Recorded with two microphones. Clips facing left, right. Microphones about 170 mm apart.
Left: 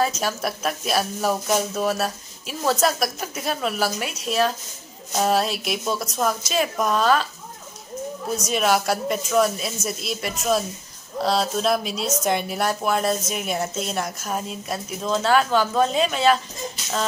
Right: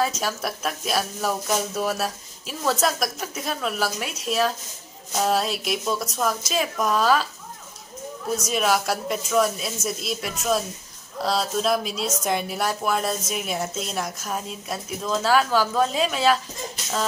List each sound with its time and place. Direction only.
0.0 s speech: centre (ahead or behind)
8.5 s speech: centre (ahead or behind)